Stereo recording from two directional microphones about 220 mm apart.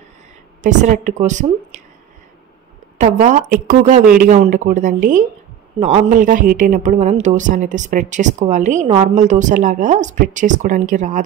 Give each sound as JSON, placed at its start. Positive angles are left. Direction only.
{"t": 0.6, "sound": "a man's voice", "side_deg": -35}
{"t": 3.2, "sound": "a man's voice", "side_deg": -35}